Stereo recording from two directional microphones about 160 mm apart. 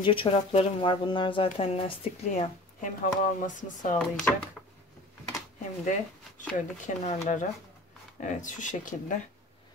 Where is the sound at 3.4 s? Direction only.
55° left (ahead or behind).